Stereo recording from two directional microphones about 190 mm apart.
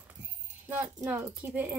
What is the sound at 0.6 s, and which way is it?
Speech, 10° right (ahead or behind).